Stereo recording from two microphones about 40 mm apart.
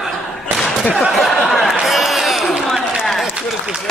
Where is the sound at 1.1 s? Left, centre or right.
Centre.